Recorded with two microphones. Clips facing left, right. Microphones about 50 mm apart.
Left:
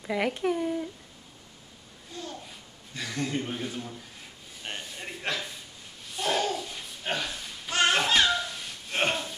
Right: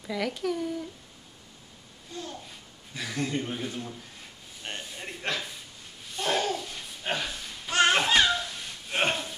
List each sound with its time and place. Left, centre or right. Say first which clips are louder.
0.0 s speech: left 3 dB; left
2.9 s speech: even; centre
4.6 s a sound: even; centre
6.1 s babbling: even; centre